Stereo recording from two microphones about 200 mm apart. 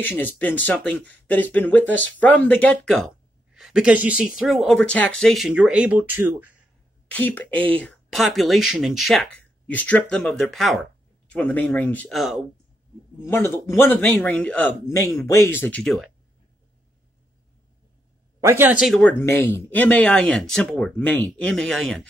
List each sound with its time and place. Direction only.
0.0 s speech: 10° left (ahead or behind); by 6.5 s 10° right (ahead or behind)
7.1 s speech: 10° left (ahead or behind)
13.2 s speech: 10° left (ahead or behind)
18.4 s speech: 10° right (ahead or behind)
19.1 s speech: 10° left (ahead or behind)